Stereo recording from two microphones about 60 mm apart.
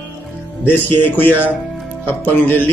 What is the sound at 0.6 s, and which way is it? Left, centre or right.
Speech, left.